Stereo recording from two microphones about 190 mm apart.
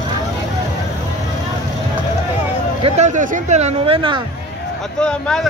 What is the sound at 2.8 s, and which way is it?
Speech, 35° right (ahead or behind).